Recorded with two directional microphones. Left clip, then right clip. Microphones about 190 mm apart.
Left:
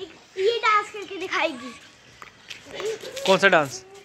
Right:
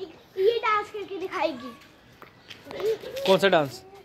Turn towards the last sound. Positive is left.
turn(degrees=5)  # may be behind; listen again after turning